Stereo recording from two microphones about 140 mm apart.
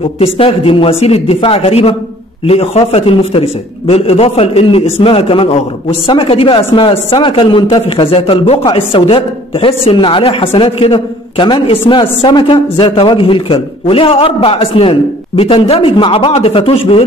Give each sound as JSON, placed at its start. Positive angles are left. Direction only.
{"t": 0.2, "sound": "a man's voice", "side_deg": 45}